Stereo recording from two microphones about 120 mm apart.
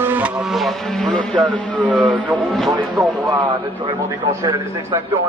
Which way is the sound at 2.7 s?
30° right (ahead or behind).